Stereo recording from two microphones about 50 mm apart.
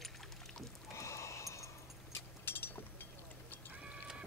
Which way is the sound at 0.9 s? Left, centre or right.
Left.